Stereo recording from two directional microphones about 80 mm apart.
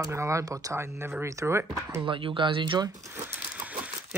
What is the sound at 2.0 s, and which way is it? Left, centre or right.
Speech, right.